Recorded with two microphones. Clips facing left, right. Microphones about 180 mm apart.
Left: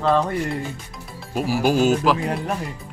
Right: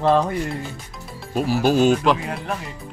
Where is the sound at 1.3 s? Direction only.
10° left (ahead or behind).